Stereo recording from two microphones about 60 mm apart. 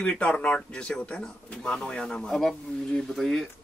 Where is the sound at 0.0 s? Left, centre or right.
Centre.